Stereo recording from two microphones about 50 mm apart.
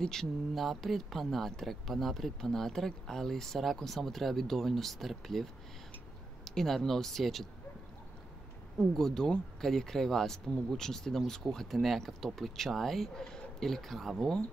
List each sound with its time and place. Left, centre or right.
0.0 s speech: centre
8.7 s speech: centre